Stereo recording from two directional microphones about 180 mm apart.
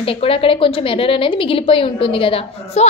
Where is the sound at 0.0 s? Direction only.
30° left (ahead or behind).